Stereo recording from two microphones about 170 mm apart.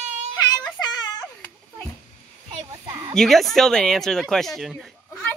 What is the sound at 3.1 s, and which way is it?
Speech, centre (ahead or behind).